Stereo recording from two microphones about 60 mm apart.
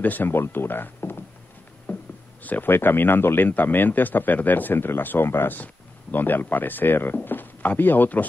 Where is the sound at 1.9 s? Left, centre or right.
Left.